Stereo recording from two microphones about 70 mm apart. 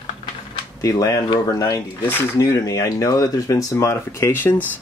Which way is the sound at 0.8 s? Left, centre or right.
Left.